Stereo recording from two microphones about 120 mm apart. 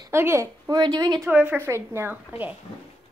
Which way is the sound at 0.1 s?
20° right (ahead or behind).